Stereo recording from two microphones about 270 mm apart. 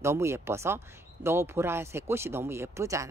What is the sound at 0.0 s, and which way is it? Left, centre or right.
Speech, centre.